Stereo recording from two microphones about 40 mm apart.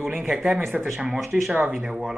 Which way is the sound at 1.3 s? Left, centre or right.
Centre.